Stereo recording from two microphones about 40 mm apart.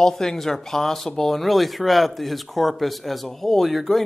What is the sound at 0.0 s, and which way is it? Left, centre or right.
Speech, centre.